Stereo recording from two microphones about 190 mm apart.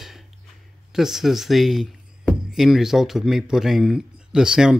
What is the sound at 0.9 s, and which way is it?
Speech, centre (ahead or behind).